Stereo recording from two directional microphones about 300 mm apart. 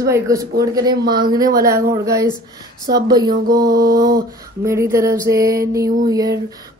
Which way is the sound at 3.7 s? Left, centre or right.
Right.